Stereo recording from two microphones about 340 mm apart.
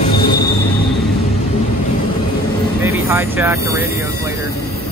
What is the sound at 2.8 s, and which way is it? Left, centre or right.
Speech, centre.